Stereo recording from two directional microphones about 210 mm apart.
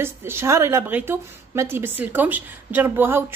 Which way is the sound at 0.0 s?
10° right (ahead or behind).